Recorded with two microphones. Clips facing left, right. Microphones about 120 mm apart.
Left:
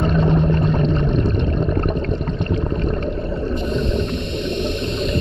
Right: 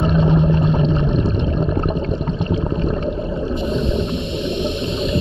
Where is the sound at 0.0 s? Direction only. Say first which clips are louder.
Right 1 dB; 15° right (ahead or behind).